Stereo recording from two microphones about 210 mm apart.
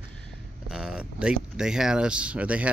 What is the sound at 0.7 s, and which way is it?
Speech, 5° right (ahead or behind).